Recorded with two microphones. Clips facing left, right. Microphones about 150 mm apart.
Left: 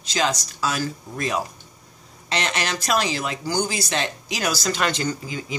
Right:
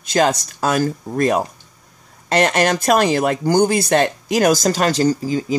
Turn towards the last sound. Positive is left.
turn(degrees=-35)  # may be behind; listen again after turning